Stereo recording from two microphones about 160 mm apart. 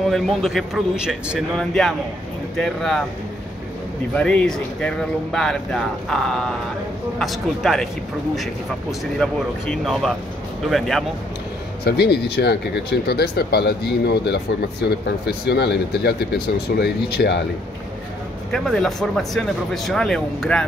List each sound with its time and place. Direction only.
0.1 s speech: centre (ahead or behind)
4.1 s speech: 5° left (ahead or behind)
9.2 s speech: centre (ahead or behind)
11.8 s speech: 90° left
18.5 s speech: centre (ahead or behind)